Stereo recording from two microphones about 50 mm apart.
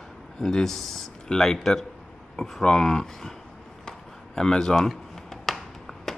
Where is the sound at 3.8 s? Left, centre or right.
Centre.